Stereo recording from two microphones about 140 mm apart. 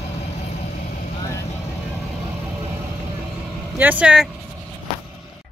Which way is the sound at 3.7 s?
10° right (ahead or behind).